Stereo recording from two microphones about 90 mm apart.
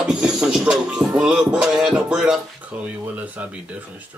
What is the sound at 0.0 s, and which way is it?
Music, 10° right (ahead or behind).